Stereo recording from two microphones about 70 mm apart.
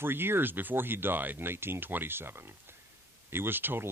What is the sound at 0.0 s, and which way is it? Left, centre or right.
Speech, right.